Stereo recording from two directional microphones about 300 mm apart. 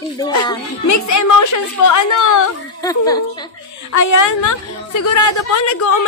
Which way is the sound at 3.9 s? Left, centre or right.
Left.